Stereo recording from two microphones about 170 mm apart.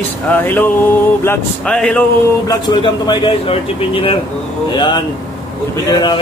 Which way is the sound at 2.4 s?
25° left (ahead or behind).